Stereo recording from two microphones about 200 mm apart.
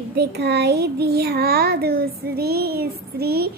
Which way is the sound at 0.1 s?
55° right (ahead or behind).